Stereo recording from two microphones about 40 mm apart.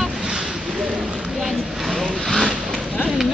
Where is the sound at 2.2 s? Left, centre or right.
Centre.